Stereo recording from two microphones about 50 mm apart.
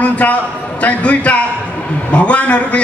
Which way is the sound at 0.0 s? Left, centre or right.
Left.